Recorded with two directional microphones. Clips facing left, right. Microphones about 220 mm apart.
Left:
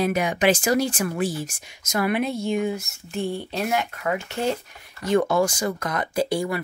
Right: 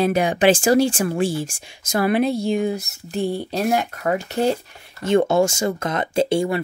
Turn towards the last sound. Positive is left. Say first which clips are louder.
# right 5 dB
turn(degrees=-25)  # may be behind; listen again after turning